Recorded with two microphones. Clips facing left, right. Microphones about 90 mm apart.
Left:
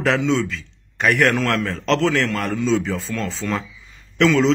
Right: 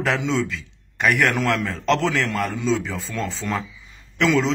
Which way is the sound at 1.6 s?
5° right (ahead or behind).